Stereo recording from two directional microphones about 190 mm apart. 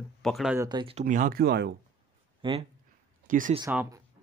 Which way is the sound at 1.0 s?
45° right (ahead or behind).